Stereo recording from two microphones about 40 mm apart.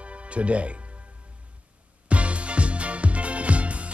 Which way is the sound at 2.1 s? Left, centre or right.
Right.